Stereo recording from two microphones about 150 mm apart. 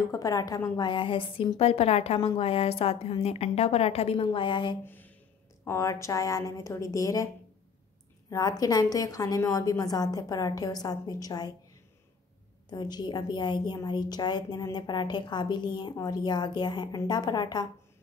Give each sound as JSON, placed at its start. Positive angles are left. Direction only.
{"t": 0.0, "sound": "a woman's voice", "side_deg": 20}
{"t": 4.8, "sound": "a sound", "side_deg": 15}
{"t": 5.7, "sound": "a woman's voice", "side_deg": 20}
{"t": 8.3, "sound": "a woman's voice", "side_deg": 25}
{"t": 12.6, "sound": "a woman's voice", "side_deg": 30}